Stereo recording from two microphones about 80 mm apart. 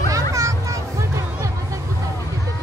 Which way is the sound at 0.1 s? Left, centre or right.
Right.